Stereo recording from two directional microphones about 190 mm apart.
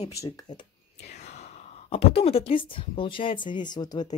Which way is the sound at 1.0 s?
35° left (ahead or behind).